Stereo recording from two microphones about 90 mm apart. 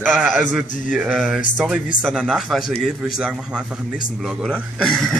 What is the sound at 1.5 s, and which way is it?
A man's voice, 15° right (ahead or behind).